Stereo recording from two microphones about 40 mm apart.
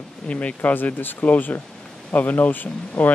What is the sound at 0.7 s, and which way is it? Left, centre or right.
Speech, left.